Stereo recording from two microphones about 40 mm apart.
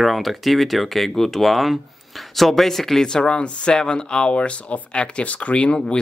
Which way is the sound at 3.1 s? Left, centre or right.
Left.